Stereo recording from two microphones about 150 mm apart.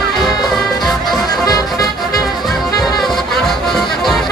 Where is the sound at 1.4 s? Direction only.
25° left (ahead or behind).